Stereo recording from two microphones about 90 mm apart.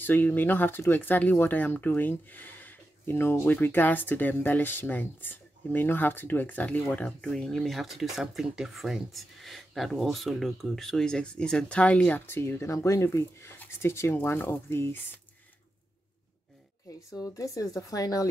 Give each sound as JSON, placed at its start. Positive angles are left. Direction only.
{"t": 0.0, "sound": "speech", "side_deg": 20}
{"t": 12.3, "sound": "speech", "side_deg": 25}
{"t": 17.1, "sound": "speech", "side_deg": 40}